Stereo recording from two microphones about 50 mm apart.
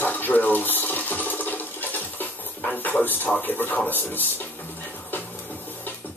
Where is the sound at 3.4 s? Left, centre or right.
Left.